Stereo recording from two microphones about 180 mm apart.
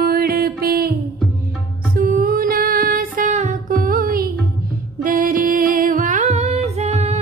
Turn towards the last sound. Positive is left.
turn(degrees=-35)  # may be behind; listen again after turning